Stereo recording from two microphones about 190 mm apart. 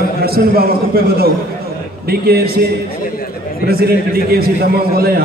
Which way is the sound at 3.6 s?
55° right (ahead or behind).